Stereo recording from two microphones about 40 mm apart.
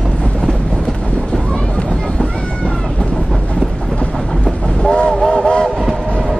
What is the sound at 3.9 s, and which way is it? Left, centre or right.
Train, left.